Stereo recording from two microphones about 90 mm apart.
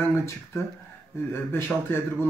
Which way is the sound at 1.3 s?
25° left (ahead or behind).